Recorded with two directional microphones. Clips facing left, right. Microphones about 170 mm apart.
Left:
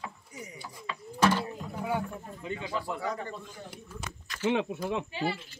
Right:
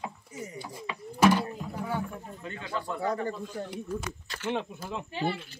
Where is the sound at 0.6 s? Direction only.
15° right (ahead or behind).